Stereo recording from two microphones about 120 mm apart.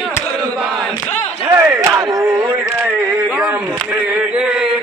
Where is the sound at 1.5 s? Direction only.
20° right (ahead or behind).